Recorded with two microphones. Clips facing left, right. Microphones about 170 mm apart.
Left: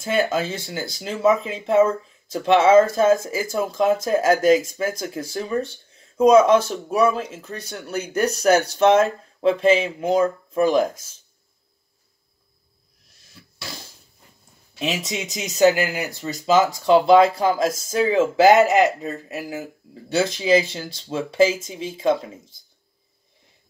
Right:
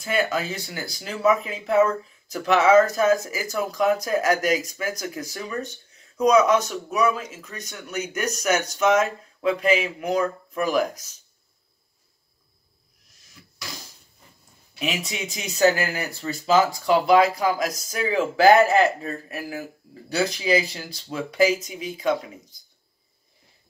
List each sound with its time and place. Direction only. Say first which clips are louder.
0.0 s speech: left 3 dB; 25° left (ahead or behind)
14.8 s speech: left 3 dB; 20° left (ahead or behind)